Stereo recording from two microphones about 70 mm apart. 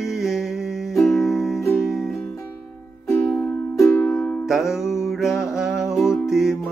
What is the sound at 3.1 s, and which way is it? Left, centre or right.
Music, left.